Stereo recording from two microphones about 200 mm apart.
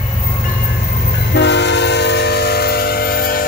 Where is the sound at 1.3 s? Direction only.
60° left (ahead or behind).